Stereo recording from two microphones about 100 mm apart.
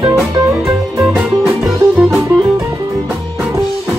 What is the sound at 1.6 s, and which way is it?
Music, 15° right (ahead or behind).